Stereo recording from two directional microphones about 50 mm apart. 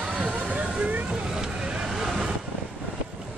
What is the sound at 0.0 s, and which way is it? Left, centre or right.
Vehicle, right.